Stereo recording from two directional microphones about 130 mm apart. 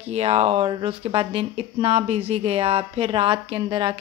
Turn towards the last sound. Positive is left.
turn(degrees=-40)  # may be behind; listen again after turning